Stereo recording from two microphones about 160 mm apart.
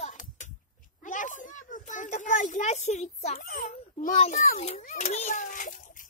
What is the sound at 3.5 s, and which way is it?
Speech, 55° left (ahead or behind).